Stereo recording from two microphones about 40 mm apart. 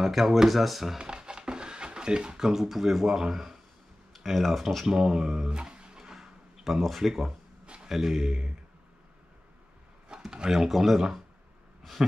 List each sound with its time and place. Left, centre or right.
0.0 s speech: centre
0.9 s speech: right; by 4.8 s centre
4.8 s speech: centre
5.5 s a sound: right
6.6 s speech: centre
7.6 s a sound: right
7.9 s speech: centre
10.0 s a sound: centre
10.7 s speech: centre